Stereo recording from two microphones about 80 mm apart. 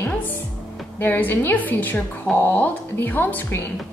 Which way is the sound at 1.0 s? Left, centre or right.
Left.